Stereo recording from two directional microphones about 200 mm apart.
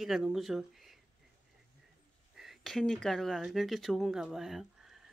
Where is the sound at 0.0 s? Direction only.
Centre (ahead or behind).